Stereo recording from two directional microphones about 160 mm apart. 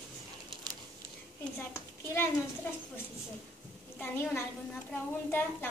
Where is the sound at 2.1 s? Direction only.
15° left (ahead or behind).